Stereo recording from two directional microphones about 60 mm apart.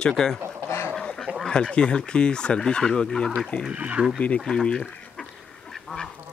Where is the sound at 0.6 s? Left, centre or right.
Left.